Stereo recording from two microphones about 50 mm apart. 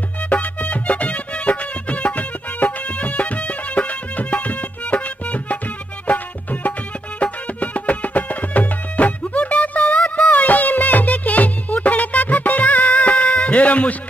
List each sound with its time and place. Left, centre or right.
0.3 s music: left